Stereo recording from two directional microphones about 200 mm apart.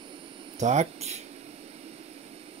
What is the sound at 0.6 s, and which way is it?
Speech, 35° right (ahead or behind).